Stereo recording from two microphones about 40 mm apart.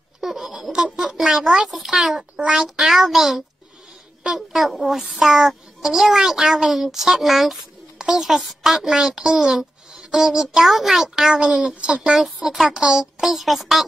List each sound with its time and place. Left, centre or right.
0.2 s a sound: centre
0.9 s a child's voice: centre
1.7 s a child's voice: centre
2.3 s a child's voice: right
2.9 s a child's voice: centre
11.3 s speech: right
12.5 s a child's voice: centre